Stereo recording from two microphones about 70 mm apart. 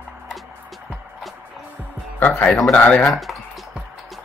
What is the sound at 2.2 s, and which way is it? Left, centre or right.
Music, left.